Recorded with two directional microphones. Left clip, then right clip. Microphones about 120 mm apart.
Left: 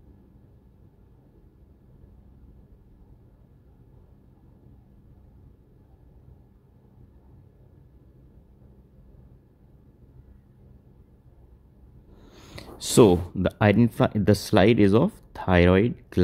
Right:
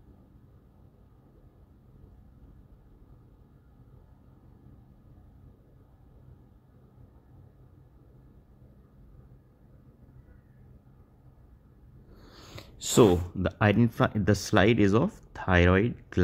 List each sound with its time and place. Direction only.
12.2 s speech: 20° left (ahead or behind)